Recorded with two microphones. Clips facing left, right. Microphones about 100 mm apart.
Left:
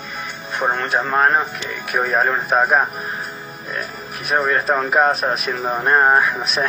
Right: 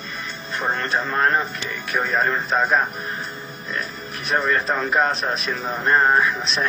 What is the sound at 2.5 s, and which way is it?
Speech, 15° left (ahead or behind).